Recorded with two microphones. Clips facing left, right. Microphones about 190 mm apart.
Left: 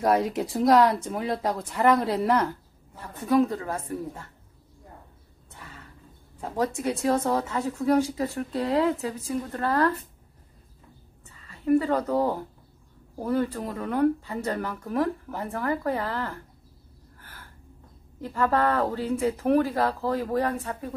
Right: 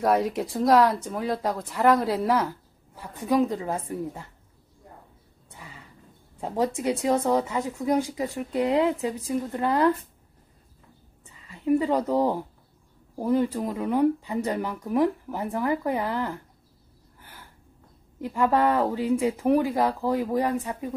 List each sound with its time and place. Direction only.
0.0 s speech: centre (ahead or behind)
3.0 s speech: 15° right (ahead or behind)
5.5 s a sound: 10° right (ahead or behind)
6.4 s speech: 20° right (ahead or behind)
11.3 s a woman's voice: 15° right (ahead or behind)
17.2 s gasp: 15° right (ahead or behind)
18.2 s speech: 15° right (ahead or behind)